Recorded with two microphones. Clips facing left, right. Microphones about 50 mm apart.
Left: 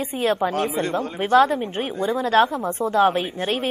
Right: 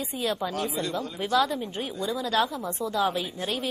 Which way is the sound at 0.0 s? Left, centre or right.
Left.